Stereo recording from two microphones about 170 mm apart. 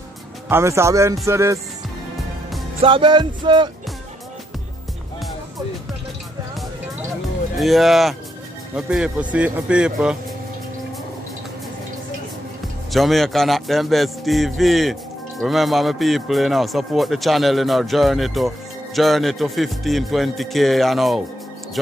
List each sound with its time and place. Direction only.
0.5 s speech: 15° right (ahead or behind)
2.8 s music: 30° right (ahead or behind)
7.5 s a man's voice: centre (ahead or behind)
12.9 s a man's voice: centre (ahead or behind)